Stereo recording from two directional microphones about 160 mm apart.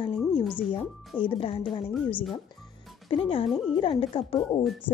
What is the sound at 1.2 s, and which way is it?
Speech, 35° left (ahead or behind).